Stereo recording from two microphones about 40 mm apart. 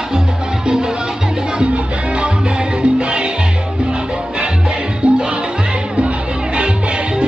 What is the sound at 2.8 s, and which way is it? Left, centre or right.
Salsa music, right.